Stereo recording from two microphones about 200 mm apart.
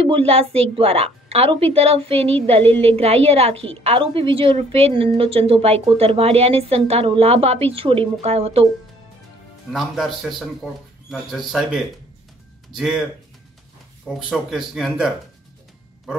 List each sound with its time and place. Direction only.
0.0 s a woman's voice: 30° right (ahead or behind)
9.7 s speech: centre (ahead or behind)
14.0 s speech: centre (ahead or behind)